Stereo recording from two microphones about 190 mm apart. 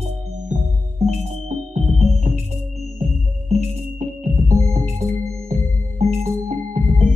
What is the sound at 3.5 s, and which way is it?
Music, 35° right (ahead or behind).